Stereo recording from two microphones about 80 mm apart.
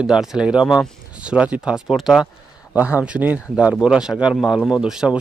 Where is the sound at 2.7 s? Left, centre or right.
Centre.